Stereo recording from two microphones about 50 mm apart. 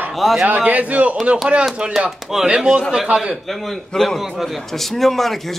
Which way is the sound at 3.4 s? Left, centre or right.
Centre.